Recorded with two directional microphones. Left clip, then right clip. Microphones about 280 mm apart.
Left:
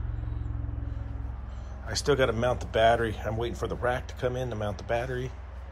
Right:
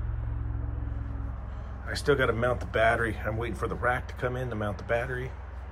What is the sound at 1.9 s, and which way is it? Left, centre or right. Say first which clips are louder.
Speech: even; centre.